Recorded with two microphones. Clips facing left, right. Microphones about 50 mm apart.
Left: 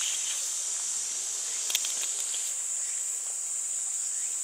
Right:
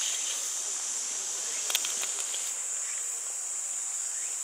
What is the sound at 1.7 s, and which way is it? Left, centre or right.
Insect, right.